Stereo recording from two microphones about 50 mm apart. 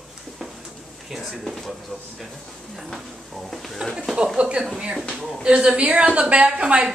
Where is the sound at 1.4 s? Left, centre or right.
Centre.